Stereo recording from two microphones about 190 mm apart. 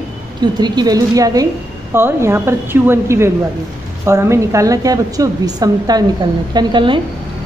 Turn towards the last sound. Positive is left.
turn(degrees=-25)  # may be behind; listen again after turning